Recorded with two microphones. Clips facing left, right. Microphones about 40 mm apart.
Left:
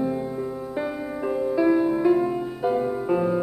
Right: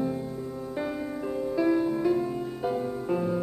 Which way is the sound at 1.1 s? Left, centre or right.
Centre.